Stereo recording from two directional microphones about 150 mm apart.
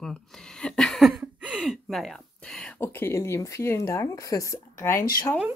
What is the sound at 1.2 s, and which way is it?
Speech, 10° right (ahead or behind).